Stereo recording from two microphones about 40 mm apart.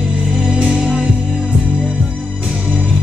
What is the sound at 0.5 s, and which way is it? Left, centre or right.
Music, right.